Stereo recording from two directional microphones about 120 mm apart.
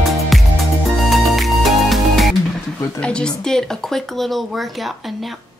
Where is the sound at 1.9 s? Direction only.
Centre (ahead or behind).